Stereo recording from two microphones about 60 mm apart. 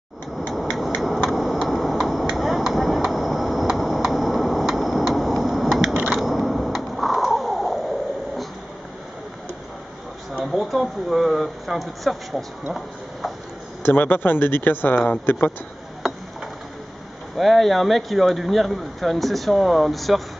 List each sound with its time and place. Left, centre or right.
0.5 s a sound: centre
2.3 s chop: centre
6.1 s a sound: centre
10.4 s speech: centre
13.8 s speech: left
16.0 s mechanisms: centre
17.4 s speech: centre